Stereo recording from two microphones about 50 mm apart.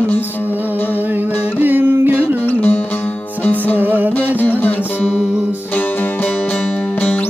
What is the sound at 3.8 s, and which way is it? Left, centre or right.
Music, right.